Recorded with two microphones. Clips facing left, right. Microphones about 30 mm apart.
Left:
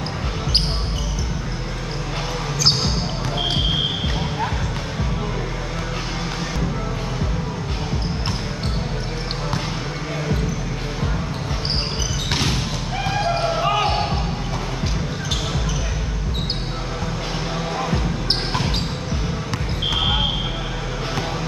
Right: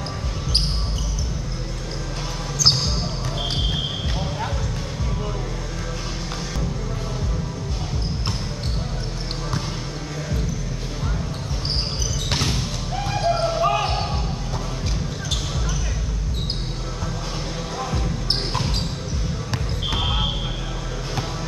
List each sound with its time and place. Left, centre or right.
13.5 s basketball bounce: left